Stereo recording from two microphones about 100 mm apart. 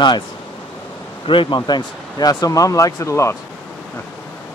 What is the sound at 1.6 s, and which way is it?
Speech, 45° left (ahead or behind).